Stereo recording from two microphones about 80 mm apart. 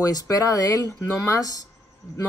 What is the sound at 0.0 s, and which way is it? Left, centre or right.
Speech, left.